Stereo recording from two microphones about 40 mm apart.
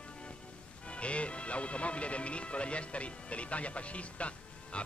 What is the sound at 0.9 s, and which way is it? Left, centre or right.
Speech, left.